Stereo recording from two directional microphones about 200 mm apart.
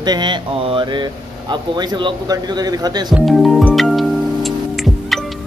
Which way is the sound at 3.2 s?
Centre (ahead or behind).